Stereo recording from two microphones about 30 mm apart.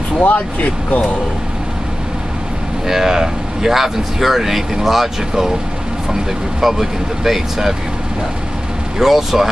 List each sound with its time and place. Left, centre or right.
0.2 s speech: left
2.9 s speech: centre
6.6 s speech: centre
8.9 s speech: centre